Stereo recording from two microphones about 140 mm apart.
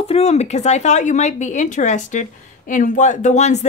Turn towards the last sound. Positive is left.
turn(degrees=55)  # may be behind; listen again after turning